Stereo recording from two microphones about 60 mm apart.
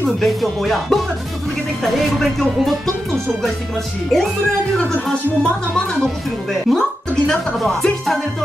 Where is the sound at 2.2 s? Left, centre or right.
Centre.